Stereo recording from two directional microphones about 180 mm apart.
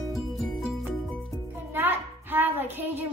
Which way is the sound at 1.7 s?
10° right (ahead or behind).